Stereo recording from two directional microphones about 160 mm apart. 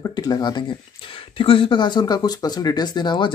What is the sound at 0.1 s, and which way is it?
Speech, 25° left (ahead or behind).